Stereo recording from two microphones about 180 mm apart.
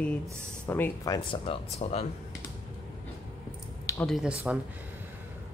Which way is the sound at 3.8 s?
15° left (ahead or behind).